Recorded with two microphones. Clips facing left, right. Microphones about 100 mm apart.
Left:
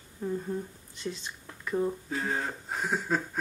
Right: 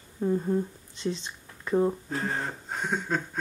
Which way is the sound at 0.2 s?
20° right (ahead or behind).